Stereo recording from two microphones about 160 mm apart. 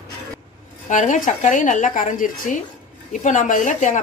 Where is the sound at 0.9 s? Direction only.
50° left (ahead or behind).